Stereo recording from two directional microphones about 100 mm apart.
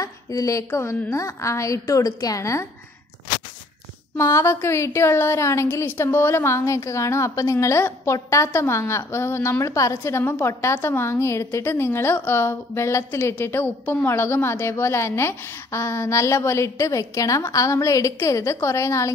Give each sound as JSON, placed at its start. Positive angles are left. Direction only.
{"t": 0.0, "sound": "a woman's voice", "side_deg": 35}
{"t": 4.2, "sound": "a woman's voice", "side_deg": 30}